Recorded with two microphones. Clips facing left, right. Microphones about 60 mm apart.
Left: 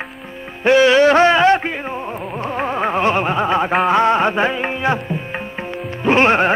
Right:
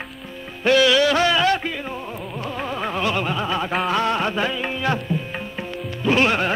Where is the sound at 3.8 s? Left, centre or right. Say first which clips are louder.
Left 7 dB; left.